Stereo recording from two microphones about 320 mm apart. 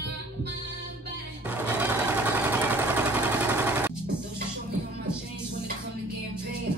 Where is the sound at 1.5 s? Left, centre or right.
Centre.